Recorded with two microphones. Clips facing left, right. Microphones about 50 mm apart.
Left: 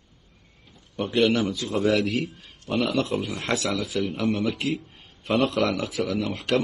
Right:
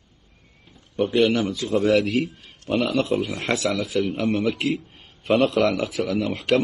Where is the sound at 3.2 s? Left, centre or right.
Right.